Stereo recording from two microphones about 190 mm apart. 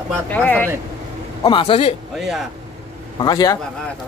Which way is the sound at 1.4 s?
25° left (ahead or behind).